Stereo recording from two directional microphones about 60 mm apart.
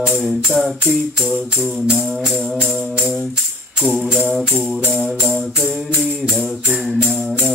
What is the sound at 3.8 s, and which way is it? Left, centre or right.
Music, centre.